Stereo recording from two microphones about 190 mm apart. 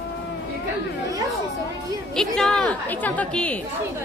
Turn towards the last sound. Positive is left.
turn(degrees=5)  # may be behind; listen again after turning